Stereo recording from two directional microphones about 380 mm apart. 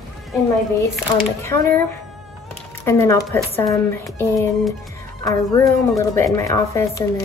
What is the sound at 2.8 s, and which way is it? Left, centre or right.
Speech, centre.